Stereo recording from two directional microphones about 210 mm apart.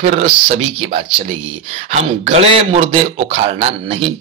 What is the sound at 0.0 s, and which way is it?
A man's voice, 30° right (ahead or behind).